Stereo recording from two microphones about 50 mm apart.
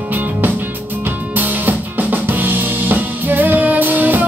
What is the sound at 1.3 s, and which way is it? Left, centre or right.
Music, right.